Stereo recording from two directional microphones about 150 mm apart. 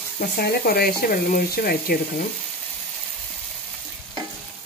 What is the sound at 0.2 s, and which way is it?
Speech, 90° left.